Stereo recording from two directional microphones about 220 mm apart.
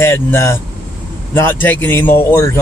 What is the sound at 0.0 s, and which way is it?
Speech, 10° left (ahead or behind).